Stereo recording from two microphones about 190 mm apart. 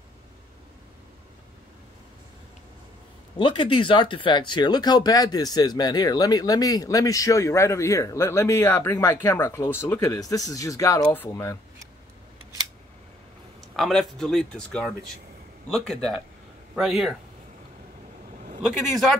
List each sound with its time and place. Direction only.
3.3 s speech: 25° left (ahead or behind)
13.7 s speech: centre (ahead or behind)
18.7 s speech: centre (ahead or behind)